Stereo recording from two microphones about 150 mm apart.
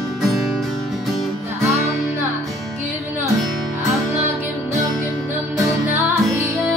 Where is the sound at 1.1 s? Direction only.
Centre (ahead or behind).